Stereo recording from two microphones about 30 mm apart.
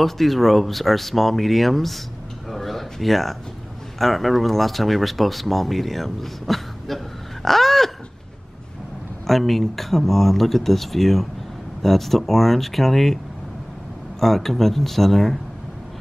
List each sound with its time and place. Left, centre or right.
0.0 s speech: centre
2.5 s a sound: centre
4.0 s speech: centre
7.4 s a sound: centre
9.3 s speech: centre
14.2 s speech: centre